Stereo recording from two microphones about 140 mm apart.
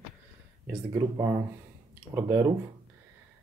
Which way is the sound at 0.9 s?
20° right (ahead or behind).